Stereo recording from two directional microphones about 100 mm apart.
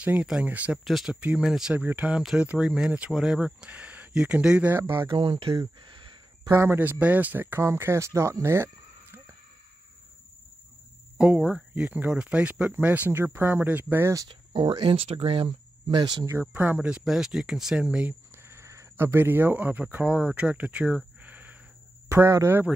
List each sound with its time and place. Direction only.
0.0 s speech: 15° right (ahead or behind)
0.8 s speech: centre (ahead or behind)
4.9 s speech: 55° right (ahead or behind)
5.8 s a sound: 55° right (ahead or behind)
6.5 s speech: 25° right (ahead or behind)
11.1 s speech: 10° right (ahead or behind)
14.3 s speech: 60° right (ahead or behind)
16.3 s speech: 20° right (ahead or behind)
22.1 s speech: 30° right (ahead or behind)